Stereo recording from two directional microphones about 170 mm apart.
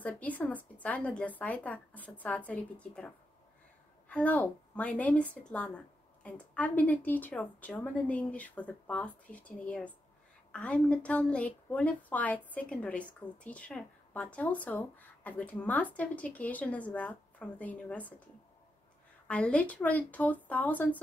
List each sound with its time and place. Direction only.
0.0 s a woman's voice: 10° left (ahead or behind)
4.1 s a woman's voice: 10° left (ahead or behind)
19.2 s a woman's voice: 5° left (ahead or behind)